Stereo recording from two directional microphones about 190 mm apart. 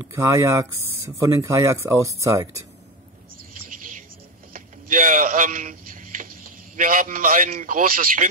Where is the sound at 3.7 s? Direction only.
45° right (ahead or behind).